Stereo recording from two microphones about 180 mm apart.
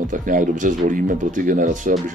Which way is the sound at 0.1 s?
45° right (ahead or behind).